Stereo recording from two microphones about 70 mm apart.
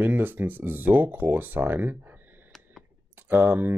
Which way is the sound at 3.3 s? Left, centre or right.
Right.